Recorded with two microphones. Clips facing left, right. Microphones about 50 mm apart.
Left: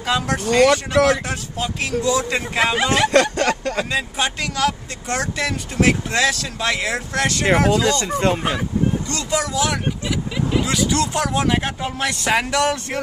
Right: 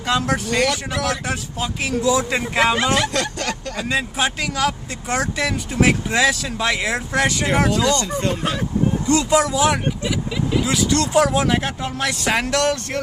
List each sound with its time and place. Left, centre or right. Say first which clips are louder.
0.0 s speech: even; centre
0.6 s speech: left 6 dB; left
1.2 s speech: even; centre
3.1 s speech: left 7 dB; left
3.9 s speech: right 1 dB; centre
7.7 s speech: left 1 dB; left
9.0 s speech: right 6 dB; centre
10.6 s speech: right 1 dB; centre